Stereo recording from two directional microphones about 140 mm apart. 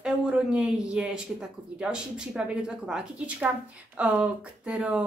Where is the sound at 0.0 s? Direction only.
5° right (ahead or behind).